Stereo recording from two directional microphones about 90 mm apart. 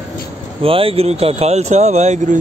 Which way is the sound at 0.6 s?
90° right.